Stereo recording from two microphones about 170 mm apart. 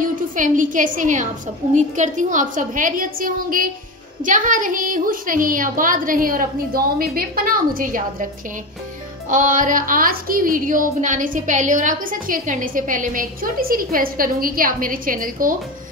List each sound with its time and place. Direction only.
0.0 s a woman's voice: 50° right (ahead or behind)
9.3 s a woman's voice: 50° right (ahead or behind)